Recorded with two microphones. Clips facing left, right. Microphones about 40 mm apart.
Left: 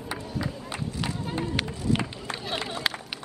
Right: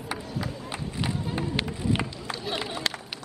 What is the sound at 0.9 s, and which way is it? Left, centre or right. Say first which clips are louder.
Run: right 2 dB; centre.